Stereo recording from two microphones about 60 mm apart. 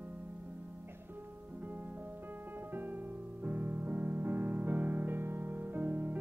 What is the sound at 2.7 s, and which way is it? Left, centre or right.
Music, right.